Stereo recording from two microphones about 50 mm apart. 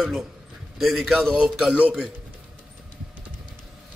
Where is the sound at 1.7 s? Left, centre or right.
Right.